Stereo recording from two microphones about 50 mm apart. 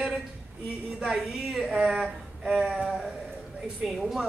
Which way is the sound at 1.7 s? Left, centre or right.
Centre.